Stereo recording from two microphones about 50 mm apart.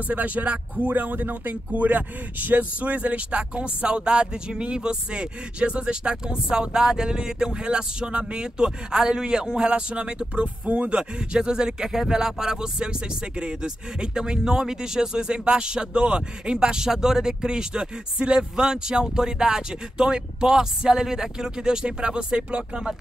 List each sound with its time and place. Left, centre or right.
0.1 s speech: right